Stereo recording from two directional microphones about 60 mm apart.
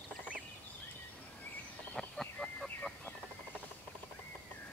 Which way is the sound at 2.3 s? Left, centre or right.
Centre.